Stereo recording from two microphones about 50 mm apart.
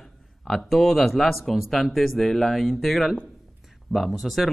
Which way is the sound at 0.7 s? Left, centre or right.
Centre.